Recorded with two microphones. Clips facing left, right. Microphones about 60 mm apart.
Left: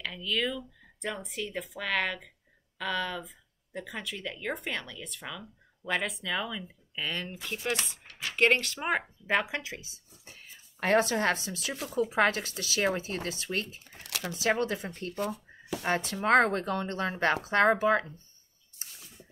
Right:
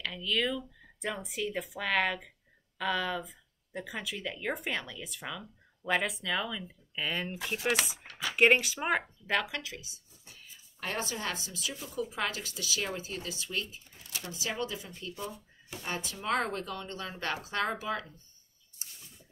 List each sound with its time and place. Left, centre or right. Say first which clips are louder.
0.0 s speech: even; centre
9.3 s speech: left 3 dB; left
10.2 s a sound: left 3 dB; left
12.2 s a woman's voice: left 8 dB; left
13.8 s a sound: left 5 dB; left
14.3 s a woman's voice: left 8 dB; left
15.9 s a woman's voice: left 8 dB; left